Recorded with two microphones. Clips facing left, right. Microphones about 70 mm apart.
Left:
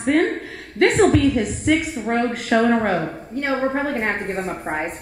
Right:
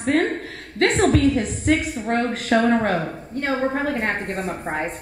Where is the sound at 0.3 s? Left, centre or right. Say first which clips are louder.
Left 1 dB; centre.